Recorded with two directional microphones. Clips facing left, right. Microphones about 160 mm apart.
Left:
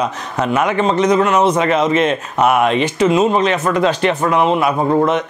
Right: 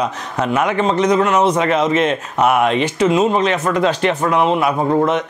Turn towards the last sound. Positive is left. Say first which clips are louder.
# left 1 dB
turn(degrees=25)  # may be behind; listen again after turning